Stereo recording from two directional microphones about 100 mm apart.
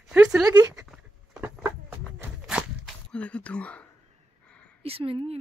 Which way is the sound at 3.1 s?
10° left (ahead or behind).